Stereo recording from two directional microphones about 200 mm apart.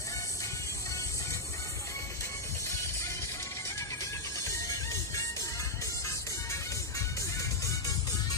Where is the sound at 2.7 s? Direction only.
15° left (ahead or behind).